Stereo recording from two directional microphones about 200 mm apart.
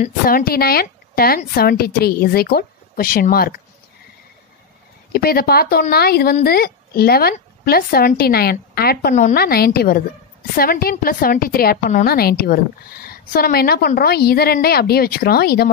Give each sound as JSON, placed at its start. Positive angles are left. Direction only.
{"t": 0.0, "sound": "a woman's voice", "side_deg": 45}
{"t": 5.1, "sound": "a woman's voice", "side_deg": 50}